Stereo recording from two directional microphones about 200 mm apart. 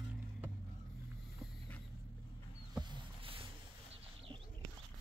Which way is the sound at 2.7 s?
25° right (ahead or behind).